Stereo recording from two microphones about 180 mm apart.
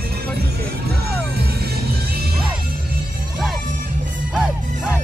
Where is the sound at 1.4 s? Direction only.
60° right (ahead or behind).